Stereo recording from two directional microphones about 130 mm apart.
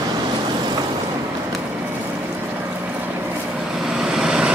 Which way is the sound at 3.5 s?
5° right (ahead or behind).